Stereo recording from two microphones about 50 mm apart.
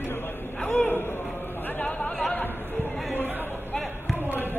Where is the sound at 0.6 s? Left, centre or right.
Left.